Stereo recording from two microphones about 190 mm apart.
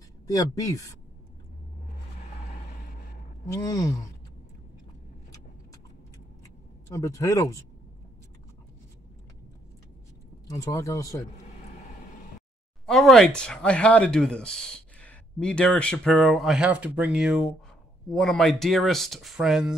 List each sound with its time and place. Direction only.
0.3 s speech: 20° left (ahead or behind)
3.6 s speech: 15° left (ahead or behind)
6.4 s a sound: 15° left (ahead or behind)
10.5 s speech: 15° left (ahead or behind)
12.8 s speech: centre (ahead or behind)